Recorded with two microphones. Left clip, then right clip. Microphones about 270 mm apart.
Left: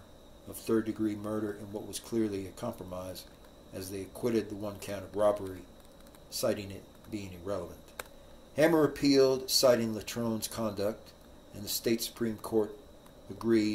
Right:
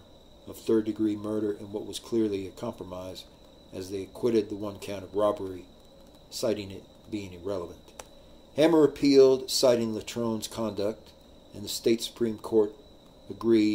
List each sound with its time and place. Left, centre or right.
0.7 s speech: centre